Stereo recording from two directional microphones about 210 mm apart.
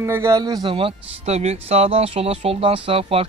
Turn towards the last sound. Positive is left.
turn(degrees=-25)  # may be behind; listen again after turning